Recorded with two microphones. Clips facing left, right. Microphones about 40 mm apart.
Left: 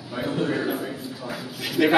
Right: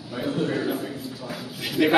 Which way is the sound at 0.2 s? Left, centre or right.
Centre.